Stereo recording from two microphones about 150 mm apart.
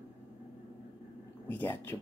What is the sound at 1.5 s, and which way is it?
Speech, 15° left (ahead or behind).